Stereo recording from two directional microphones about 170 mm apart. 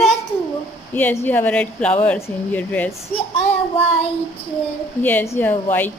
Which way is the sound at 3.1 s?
30° left (ahead or behind).